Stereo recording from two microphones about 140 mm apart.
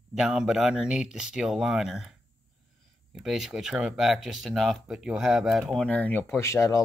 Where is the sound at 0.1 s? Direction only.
5° right (ahead or behind).